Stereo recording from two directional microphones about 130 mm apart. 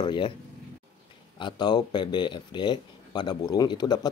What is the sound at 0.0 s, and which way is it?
Speech, 35° left (ahead or behind).